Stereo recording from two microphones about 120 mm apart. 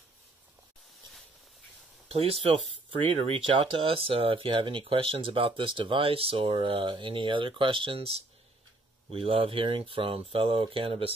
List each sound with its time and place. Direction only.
2.0 s speech: 55° right (ahead or behind)